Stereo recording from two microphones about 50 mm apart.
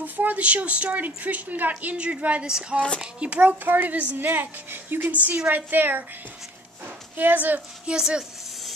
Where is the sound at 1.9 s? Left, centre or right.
Right.